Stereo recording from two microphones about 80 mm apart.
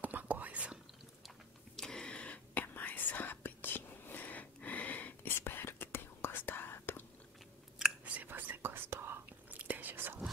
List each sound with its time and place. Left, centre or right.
0.0 s whispering: right
1.8 s whispering: centre; by 7.0 s left
7.8 s whispering: centre